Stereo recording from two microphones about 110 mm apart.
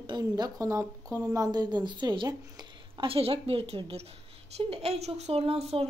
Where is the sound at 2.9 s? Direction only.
55° right (ahead or behind).